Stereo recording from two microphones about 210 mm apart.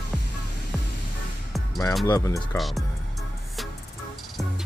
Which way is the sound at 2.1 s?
15° left (ahead or behind).